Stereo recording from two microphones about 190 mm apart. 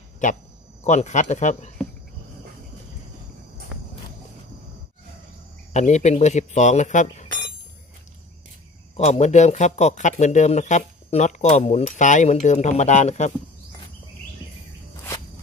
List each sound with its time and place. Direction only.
0.2 s speech: 40° left (ahead or behind)
5.7 s speech: 35° left (ahead or behind)
8.9 s speech: 35° left (ahead or behind)